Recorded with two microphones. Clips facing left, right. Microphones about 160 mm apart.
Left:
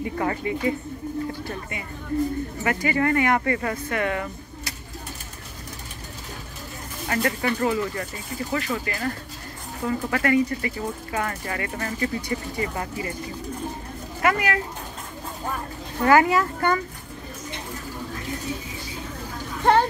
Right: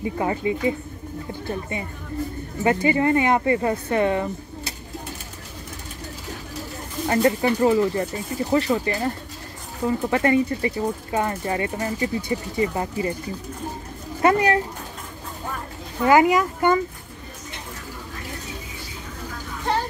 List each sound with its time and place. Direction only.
0.0 s speech: 20° right (ahead or behind)
7.1 s speech: 25° right (ahead or behind)
14.2 s speech: 30° right (ahead or behind)
16.1 s speech: 15° right (ahead or behind)